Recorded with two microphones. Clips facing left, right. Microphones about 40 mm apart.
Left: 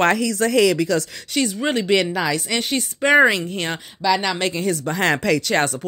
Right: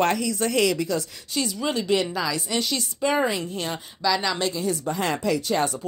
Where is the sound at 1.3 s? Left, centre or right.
Left.